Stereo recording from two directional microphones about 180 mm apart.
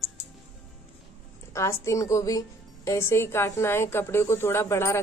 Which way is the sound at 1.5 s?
15° left (ahead or behind).